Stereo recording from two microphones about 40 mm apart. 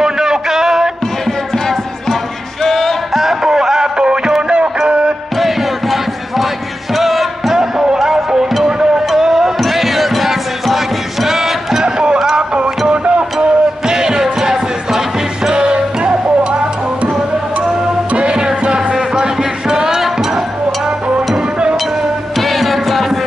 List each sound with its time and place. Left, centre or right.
0.0 s a sound: centre
2.6 s music: centre
3.2 s music: centre; by 5.1 s right
5.4 s a sound: centre
7.0 s music: centre
7.9 s music: centre
11.8 s music: right
18.1 s music: right
22.4 s music: centre